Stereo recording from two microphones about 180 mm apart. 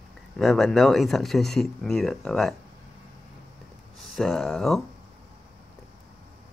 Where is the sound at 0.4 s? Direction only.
Centre (ahead or behind).